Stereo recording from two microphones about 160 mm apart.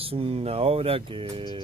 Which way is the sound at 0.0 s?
35° right (ahead or behind).